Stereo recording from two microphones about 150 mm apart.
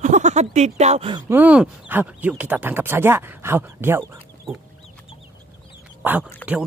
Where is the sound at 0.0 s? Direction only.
55° right (ahead or behind).